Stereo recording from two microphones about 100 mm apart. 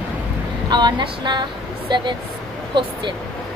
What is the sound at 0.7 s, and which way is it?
Speech, 50° right (ahead or behind).